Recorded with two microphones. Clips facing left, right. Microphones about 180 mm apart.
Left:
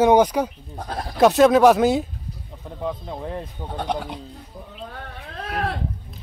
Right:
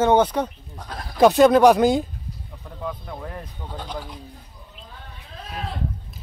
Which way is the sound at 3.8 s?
65° left (ahead or behind).